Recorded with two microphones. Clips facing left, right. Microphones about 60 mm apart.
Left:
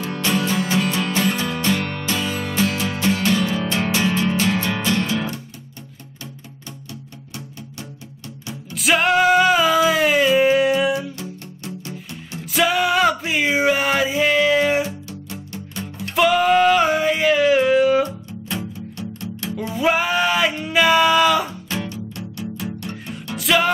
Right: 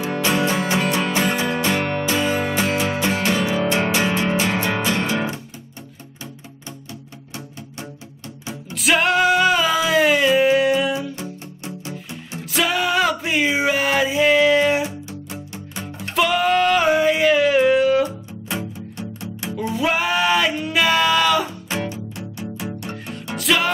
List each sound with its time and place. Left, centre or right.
0.0 s music: centre
8.7 s a sound: centre
10.9 s music: centre
12.4 s music: centre
14.8 s music: centre
16.2 s a sound: centre
19.7 s a sound: centre
21.6 s music: centre
23.3 s music: centre